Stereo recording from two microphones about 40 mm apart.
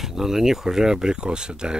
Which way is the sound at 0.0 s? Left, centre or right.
Centre.